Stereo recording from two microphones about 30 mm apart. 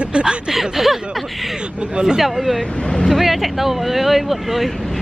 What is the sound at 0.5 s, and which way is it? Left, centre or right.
Speech, centre.